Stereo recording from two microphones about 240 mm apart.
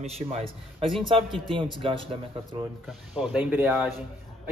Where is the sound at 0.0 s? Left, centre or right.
Right.